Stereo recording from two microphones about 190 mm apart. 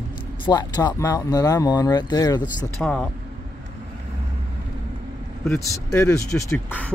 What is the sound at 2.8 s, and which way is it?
Speech, centre (ahead or behind).